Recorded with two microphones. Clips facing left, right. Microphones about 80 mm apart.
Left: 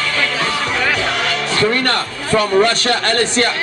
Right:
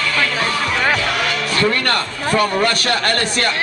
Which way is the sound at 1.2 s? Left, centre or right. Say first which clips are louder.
Left 3 dB; left.